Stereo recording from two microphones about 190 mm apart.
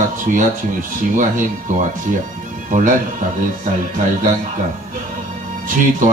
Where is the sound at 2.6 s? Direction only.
40° right (ahead or behind).